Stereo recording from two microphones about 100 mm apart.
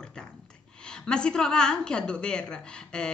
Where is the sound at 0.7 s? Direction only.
10° left (ahead or behind).